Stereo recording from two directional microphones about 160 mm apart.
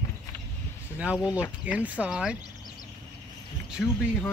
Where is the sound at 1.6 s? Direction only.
10° right (ahead or behind).